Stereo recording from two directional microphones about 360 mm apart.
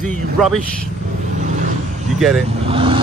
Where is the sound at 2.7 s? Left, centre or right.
Centre.